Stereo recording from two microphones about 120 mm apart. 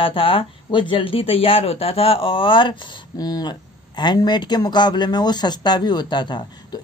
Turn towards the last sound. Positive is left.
turn(degrees=40)  # may be behind; listen again after turning